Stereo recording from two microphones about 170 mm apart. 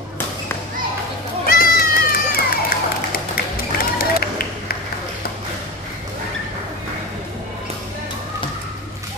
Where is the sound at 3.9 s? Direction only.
60° left (ahead or behind).